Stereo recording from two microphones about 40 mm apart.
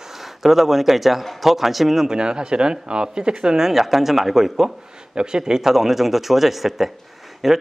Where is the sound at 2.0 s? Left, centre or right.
Right.